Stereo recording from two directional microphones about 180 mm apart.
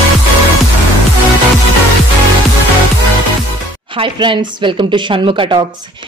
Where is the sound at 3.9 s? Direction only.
30° right (ahead or behind).